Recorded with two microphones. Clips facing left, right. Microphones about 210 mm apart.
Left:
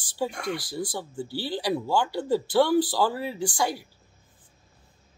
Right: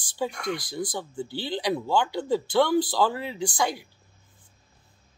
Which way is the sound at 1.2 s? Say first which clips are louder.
Even; 10° left (ahead or behind).